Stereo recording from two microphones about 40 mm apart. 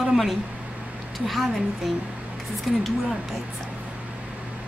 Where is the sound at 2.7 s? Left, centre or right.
Centre.